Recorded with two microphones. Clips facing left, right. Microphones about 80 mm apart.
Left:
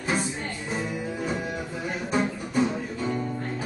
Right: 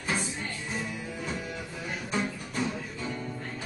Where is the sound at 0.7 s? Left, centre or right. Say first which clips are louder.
Left 8 dB; left.